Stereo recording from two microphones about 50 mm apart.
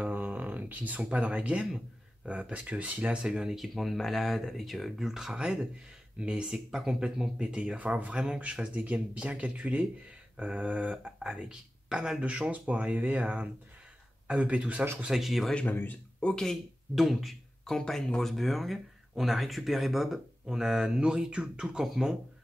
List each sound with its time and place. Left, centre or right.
0.0 s a sound: right
1.0 s speech: right
3.5 s speech: centre; by 14.9 s right
15.1 s speech: centre
15.6 s speech: left
16.2 s speech: centre
16.9 s speech: centre
18.2 s speech: centre
21.8 s speech: centre